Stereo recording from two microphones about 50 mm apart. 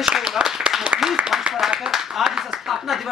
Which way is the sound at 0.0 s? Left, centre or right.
Centre.